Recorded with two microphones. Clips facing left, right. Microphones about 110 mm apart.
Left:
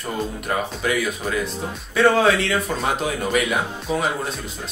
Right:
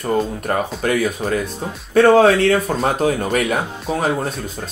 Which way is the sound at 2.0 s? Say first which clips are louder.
Right 6 dB; 45° right (ahead or behind).